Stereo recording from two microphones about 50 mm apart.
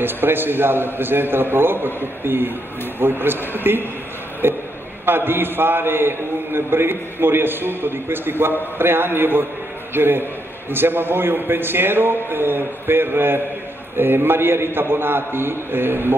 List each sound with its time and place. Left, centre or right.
0.0 s a man's voice: right
4.4 s a sound: right
5.0 s a man's voice: right